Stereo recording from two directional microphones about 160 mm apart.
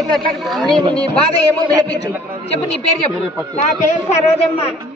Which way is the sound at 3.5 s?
50° left (ahead or behind).